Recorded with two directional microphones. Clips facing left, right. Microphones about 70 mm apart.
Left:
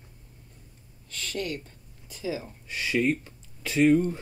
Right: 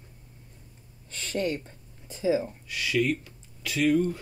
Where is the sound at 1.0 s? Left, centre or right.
Right.